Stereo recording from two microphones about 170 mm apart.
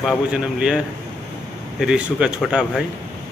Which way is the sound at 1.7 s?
5° right (ahead or behind).